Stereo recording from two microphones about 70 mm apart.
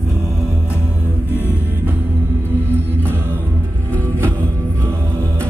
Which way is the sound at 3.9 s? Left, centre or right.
Right.